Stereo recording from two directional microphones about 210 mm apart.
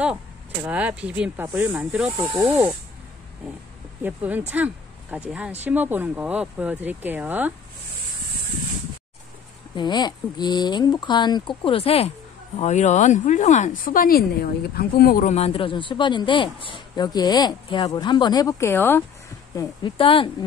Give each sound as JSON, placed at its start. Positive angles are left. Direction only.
{"t": 0.7, "sound": "speech", "side_deg": -5}
{"t": 2.0, "sound": "speech", "side_deg": -25}
{"t": 4.0, "sound": "speech", "side_deg": -10}
{"t": 9.8, "sound": "speech", "side_deg": 20}
{"t": 19.5, "sound": "speech", "side_deg": 25}